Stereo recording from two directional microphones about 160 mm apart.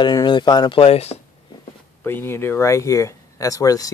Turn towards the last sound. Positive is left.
turn(degrees=20)  # may be behind; listen again after turning